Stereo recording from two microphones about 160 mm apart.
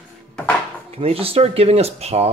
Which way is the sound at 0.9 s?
40° right (ahead or behind).